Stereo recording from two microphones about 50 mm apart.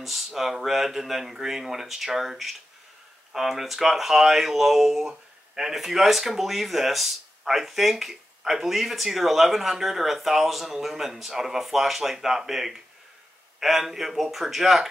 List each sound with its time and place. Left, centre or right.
0.0 s speech: centre